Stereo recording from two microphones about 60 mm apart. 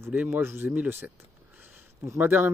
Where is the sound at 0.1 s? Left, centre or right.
Right.